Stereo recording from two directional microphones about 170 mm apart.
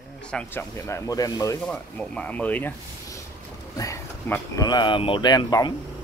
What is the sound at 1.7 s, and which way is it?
Speech, 10° left (ahead or behind).